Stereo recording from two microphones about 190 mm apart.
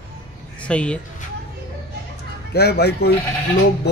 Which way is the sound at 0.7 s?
5° left (ahead or behind).